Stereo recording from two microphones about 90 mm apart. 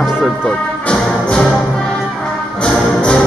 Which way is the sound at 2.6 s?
10° left (ahead or behind).